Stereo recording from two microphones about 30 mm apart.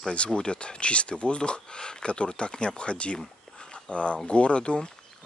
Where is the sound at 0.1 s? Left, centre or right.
Left.